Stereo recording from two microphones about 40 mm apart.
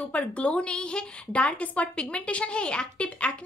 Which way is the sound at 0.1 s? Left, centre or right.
Left.